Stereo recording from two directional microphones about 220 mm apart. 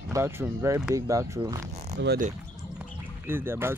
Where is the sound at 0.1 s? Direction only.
10° right (ahead or behind).